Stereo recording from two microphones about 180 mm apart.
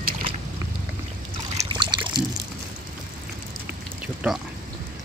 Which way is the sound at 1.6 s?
25° right (ahead or behind).